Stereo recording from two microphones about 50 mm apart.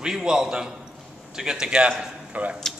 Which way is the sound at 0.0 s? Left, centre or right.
Centre.